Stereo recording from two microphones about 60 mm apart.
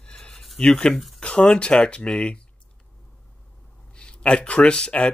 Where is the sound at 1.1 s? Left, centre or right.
Centre.